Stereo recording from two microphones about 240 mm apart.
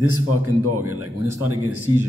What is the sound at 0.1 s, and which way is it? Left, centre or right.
Speech, right.